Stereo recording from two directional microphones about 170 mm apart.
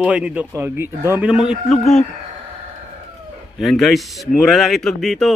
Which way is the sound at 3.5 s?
Centre (ahead or behind).